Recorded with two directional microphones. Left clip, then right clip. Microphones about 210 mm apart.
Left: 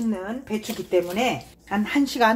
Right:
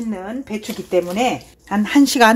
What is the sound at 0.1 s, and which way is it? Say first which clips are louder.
Speech: right 2 dB; 30° right (ahead or behind).